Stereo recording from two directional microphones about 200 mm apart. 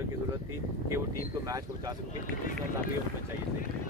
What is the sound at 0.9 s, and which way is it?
Speech, 15° right (ahead or behind).